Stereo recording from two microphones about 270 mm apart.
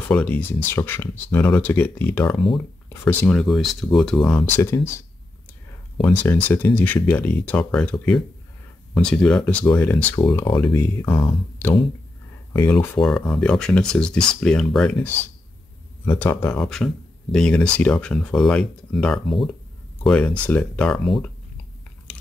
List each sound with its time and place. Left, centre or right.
0.1 s speech: centre
2.4 s speech: centre
3.1 s speech: centre
5.9 s speech: centre
12.5 s speech: centre